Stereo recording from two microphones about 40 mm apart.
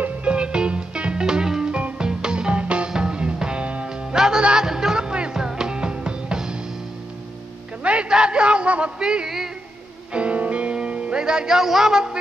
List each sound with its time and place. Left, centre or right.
0.2 s music: right
1.7 s music: right
2.0 s music: centre
3.9 s music: centre
7.8 s a sound: right
9.0 s a man's voice: centre
10.1 s music: right; by 12.2 s centre